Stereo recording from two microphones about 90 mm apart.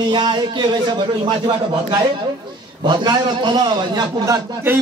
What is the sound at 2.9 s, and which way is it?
A man's voice, 55° right (ahead or behind).